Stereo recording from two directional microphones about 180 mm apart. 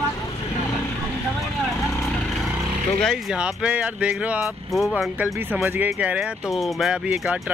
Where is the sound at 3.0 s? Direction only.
Centre (ahead or behind).